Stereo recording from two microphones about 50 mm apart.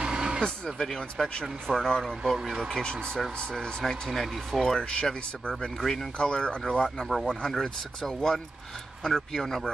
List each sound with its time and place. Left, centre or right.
0.0 s vehicle: centre
0.7 s speech: centre
4.7 s speech: centre